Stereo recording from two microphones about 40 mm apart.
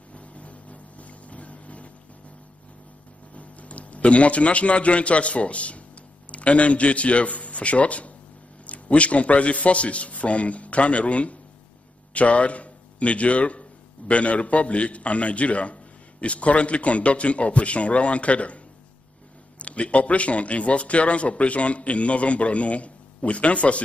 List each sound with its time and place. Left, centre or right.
0.1 s boat: left
3.3 s a man's voice: left
19.6 s a man's voice: left